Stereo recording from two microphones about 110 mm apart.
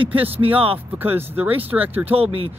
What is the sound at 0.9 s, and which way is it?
Speech, 20° right (ahead or behind).